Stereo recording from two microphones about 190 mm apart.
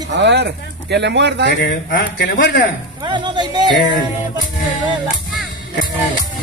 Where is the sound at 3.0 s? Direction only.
25° right (ahead or behind).